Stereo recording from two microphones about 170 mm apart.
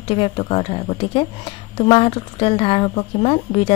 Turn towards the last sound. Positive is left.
turn(degrees=35)  # may be behind; listen again after turning